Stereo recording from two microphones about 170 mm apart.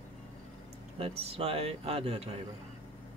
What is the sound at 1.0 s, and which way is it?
Speech, 35° right (ahead or behind).